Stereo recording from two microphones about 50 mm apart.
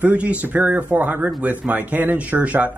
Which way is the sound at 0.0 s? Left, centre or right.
Right.